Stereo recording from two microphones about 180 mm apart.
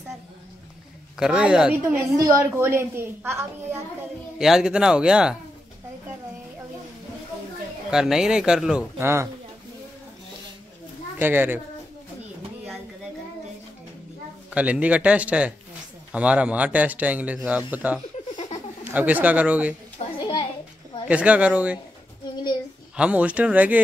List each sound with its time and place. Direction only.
1.2 s a woman's voice: 5° right (ahead or behind)
4.4 s speech: 5° right (ahead or behind)
7.9 s speech: 5° right (ahead or behind)
8.9 s a woman's voice: 15° right (ahead or behind)
11.1 s a woman's voice: 10° right (ahead or behind)
14.5 s a woman's voice: 10° right (ahead or behind)
20.2 s a sound: 30° left (ahead or behind)
21.1 s a woman's voice: 5° right (ahead or behind)
22.3 s a child's voice: 25° left (ahead or behind)
22.9 s a woman's voice: 5° right (ahead or behind)